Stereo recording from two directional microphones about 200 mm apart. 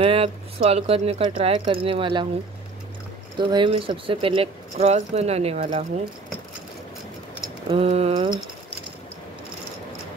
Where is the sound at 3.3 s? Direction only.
25° right (ahead or behind).